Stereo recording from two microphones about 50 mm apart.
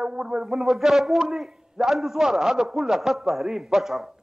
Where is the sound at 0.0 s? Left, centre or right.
Centre.